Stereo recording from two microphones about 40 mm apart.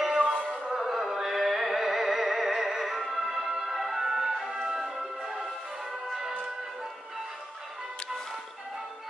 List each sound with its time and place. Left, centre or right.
0.2 s music: left
0.7 s music: centre